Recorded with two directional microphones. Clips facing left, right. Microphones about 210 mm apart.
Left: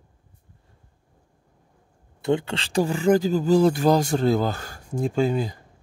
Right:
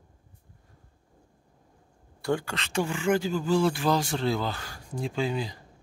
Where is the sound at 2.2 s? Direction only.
20° left (ahead or behind); by 5.6 s 45° left (ahead or behind).